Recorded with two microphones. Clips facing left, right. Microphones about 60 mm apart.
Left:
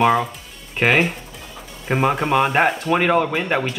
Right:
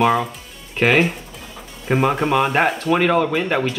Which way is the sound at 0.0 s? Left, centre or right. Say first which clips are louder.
Even; centre.